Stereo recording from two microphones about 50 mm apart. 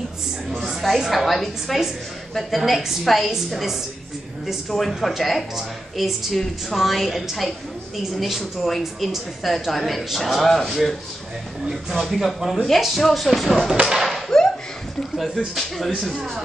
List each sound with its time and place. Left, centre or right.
0.5 s speech: centre
13.8 s thump: centre
15.1 s speech: centre